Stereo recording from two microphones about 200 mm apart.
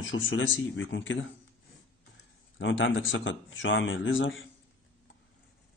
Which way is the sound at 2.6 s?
70° left (ahead or behind).